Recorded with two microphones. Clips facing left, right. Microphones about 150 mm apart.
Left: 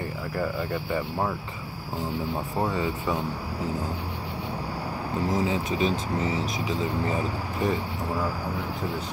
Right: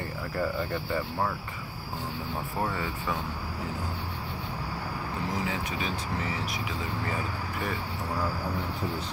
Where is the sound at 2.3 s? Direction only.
15° left (ahead or behind).